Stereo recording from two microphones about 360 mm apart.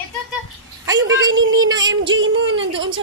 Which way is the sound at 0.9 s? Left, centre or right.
Centre.